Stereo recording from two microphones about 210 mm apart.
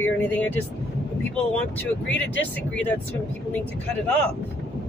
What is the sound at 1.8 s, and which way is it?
Speech, 5° left (ahead or behind).